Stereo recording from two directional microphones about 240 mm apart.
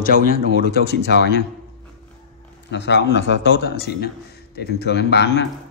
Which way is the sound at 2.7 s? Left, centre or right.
Left.